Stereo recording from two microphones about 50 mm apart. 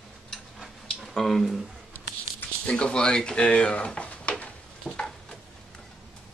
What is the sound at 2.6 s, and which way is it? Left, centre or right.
Speech, centre.